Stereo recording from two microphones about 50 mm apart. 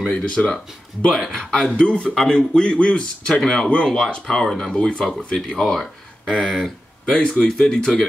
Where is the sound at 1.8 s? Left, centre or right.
Centre.